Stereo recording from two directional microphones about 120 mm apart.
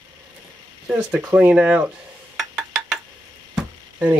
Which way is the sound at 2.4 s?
Centre (ahead or behind).